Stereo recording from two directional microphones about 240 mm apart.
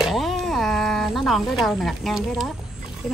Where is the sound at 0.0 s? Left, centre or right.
Centre.